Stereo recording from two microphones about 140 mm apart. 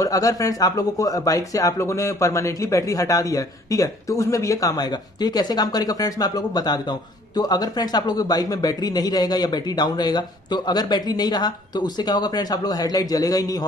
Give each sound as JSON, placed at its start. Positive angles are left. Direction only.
{"t": 0.0, "sound": "speech", "side_deg": 25}